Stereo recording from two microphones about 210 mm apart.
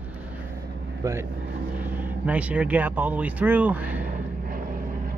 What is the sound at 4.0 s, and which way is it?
Vehicle, 45° right (ahead or behind).